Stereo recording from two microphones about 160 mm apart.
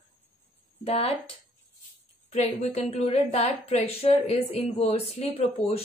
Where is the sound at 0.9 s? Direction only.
40° left (ahead or behind).